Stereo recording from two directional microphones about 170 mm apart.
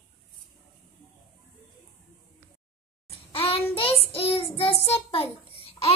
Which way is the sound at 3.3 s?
35° left (ahead or behind).